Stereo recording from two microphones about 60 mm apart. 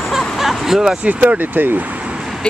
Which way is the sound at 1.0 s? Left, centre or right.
Right.